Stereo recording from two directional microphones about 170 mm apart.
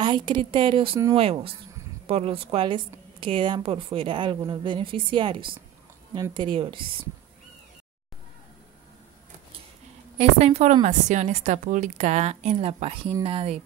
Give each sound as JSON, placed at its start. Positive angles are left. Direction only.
{"t": 0.0, "sound": "a woman's voice", "side_deg": -25}
{"t": 10.1, "sound": "a woman's voice", "side_deg": -40}